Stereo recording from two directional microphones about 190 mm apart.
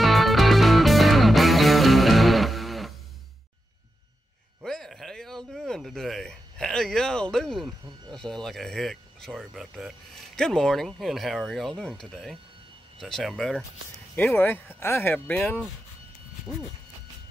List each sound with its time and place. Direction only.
0.0 s music: centre (ahead or behind)
4.6 s speech: centre (ahead or behind)
14.1 s speech: 10° left (ahead or behind)